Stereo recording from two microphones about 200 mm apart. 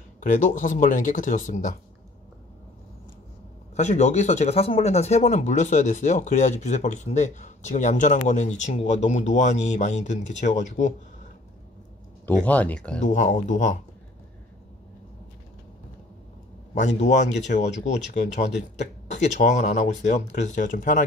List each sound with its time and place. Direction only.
0.2 s speech: 40° left (ahead or behind)
3.7 s speech: 35° left (ahead or behind)
12.4 s speech: 5° left (ahead or behind)
13.0 s speech: 40° left (ahead or behind)
16.7 s speech: 35° left (ahead or behind)